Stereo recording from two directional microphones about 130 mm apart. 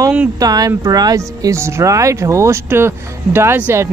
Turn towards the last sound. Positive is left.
turn(degrees=-15)  # may be behind; listen again after turning